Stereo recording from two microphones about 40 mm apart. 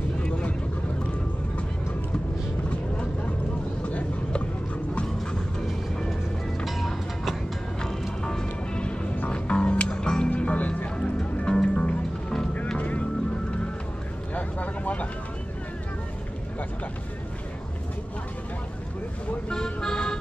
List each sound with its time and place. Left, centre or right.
0.2 s vehicle: left
2.7 s vehicle: left
6.6 s music: centre
8.2 s music: centre
10.3 s music: left
11.0 s music: left
12.7 s music: left
14.3 s vehicle: left
19.5 s vehicle: centre